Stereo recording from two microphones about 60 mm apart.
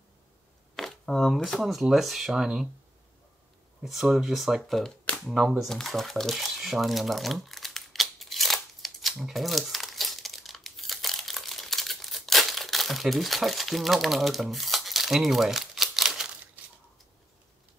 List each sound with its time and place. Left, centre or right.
0.7 s speech: centre
3.8 s speech: centre
5.7 s crumpling: centre